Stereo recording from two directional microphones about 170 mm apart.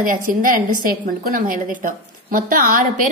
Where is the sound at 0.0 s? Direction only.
55° right (ahead or behind).